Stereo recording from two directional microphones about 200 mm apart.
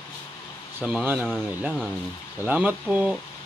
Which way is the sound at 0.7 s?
5° right (ahead or behind).